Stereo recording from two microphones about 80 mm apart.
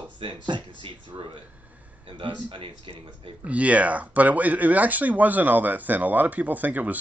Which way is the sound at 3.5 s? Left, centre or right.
Centre.